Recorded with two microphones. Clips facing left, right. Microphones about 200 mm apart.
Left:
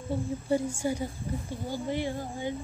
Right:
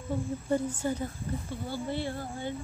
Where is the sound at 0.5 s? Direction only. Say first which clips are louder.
Left 1 dB; 10° left (ahead or behind).